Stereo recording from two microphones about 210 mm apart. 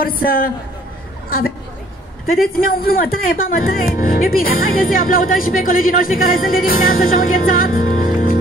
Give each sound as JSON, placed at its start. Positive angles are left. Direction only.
{"t": 0.0, "sound": "a woman's voice", "side_deg": 45}
{"t": 2.2, "sound": "a woman's voice", "side_deg": 45}